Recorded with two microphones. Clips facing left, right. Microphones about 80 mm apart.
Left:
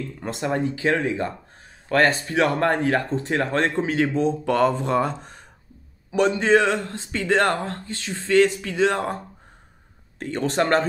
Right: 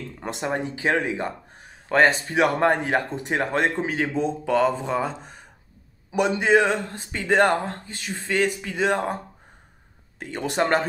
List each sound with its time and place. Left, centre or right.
0.2 s speech: centre
4.1 s speech: centre
10.1 s speech: centre